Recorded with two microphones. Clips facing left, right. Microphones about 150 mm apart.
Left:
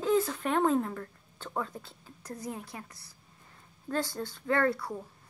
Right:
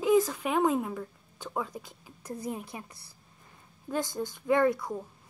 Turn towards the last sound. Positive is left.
turn(degrees=-15)  # may be behind; listen again after turning